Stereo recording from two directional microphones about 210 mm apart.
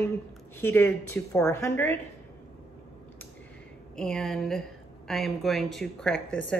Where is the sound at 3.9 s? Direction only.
5° left (ahead or behind).